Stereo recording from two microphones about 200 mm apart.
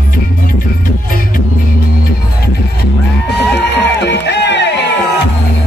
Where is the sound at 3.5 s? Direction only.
60° left (ahead or behind).